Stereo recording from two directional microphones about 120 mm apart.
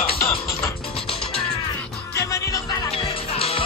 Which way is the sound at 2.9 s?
55° left (ahead or behind).